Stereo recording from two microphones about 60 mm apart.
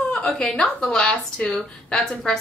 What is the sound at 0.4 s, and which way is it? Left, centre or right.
A woman's voice, centre.